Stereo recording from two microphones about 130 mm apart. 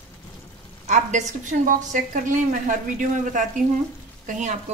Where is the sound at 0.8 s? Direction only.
65° right (ahead or behind).